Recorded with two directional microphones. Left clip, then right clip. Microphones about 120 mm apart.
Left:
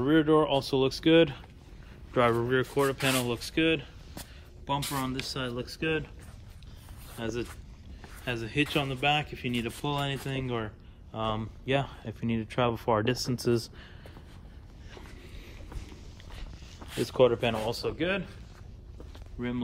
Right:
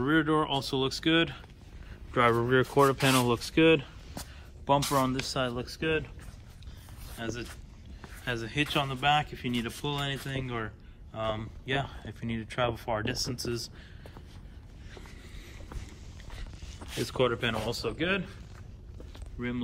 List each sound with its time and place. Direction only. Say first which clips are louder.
0.0 s speech: left 3 dB; 5° left (ahead or behind); by 1.4 s 25° left (ahead or behind)
2.1 s speech: even; 10° left (ahead or behind)
2.4 s speech: right 3 dB; centre (ahead or behind)
7.2 s speech: left 3 dB; 25° left (ahead or behind)
8.3 s speech: left 1 dB; 10° left (ahead or behind)
11.1 s speech: left 1 dB; 20° left (ahead or behind); by 13.2 s 40° left (ahead or behind)
13.4 s speech: left 6 dB; 55° left (ahead or behind)
16.9 s speech: left 5 dB; 15° left (ahead or behind)
19.4 s speech: left 1 dB; 20° left (ahead or behind)